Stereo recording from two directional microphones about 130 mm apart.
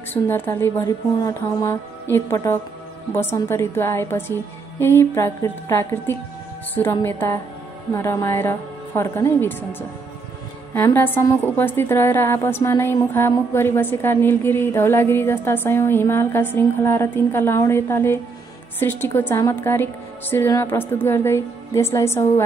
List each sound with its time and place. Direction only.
0.1 s a woman's voice: 15° left (ahead or behind)
11.0 s a woman's voice: 15° left (ahead or behind)